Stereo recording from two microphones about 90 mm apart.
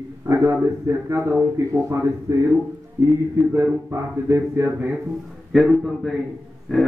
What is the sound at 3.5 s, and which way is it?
Speech, 30° right (ahead or behind).